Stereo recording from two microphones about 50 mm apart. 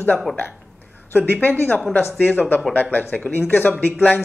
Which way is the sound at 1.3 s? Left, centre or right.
Left.